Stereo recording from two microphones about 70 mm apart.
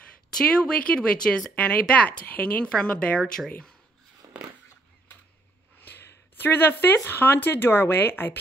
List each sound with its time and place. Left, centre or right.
0.4 s speech: centre
4.2 s a sound: right
5.8 s speech: left